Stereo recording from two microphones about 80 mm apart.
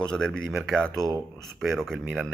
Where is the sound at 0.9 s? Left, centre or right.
Right.